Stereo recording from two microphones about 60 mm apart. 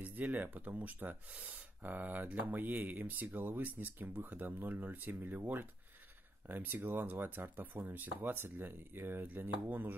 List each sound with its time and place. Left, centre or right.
0.0 s speech: right